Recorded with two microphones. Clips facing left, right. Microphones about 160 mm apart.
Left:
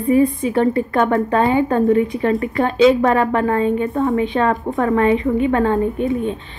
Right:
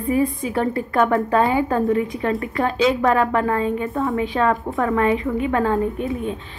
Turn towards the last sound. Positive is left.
turn(degrees=-5)  # may be behind; listen again after turning